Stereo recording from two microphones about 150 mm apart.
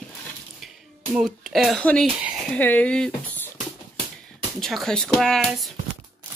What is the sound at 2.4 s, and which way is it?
Speech, 10° left (ahead or behind).